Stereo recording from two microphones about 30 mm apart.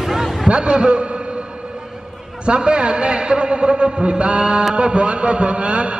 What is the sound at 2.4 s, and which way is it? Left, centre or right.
A man's voice, right.